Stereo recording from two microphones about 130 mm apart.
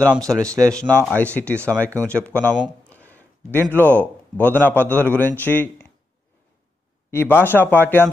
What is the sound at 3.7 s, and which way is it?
A man's voice, 15° left (ahead or behind).